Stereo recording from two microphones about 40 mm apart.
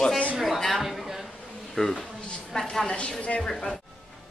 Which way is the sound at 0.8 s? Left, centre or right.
Centre.